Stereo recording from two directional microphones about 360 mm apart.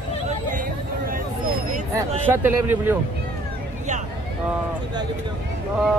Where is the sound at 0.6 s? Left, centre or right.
Right.